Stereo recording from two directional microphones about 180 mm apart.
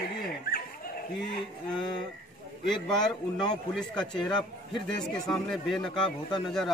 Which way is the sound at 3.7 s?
5° left (ahead or behind).